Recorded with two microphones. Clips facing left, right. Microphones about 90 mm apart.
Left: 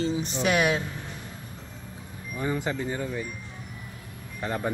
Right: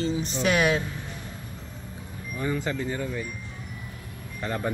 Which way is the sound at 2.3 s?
20° left (ahead or behind).